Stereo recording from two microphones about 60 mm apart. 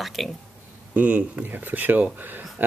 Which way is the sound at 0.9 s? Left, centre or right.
Right.